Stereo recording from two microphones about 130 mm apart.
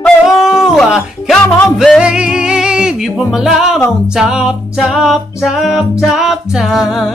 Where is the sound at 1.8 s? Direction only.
5° right (ahead or behind).